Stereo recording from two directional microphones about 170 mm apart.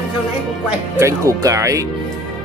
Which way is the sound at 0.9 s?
20° right (ahead or behind).